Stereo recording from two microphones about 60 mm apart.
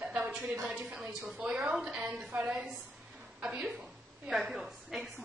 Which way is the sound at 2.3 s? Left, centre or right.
Right.